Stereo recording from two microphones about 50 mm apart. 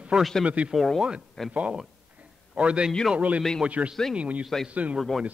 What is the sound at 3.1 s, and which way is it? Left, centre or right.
A man's voice, right.